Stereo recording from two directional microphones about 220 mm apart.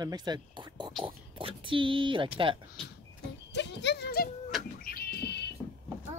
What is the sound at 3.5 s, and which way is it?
Horse, 50° left (ahead or behind).